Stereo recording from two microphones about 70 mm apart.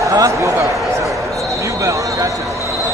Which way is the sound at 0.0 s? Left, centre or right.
Right.